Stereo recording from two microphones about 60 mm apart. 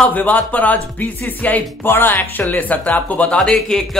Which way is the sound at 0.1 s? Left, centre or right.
Left.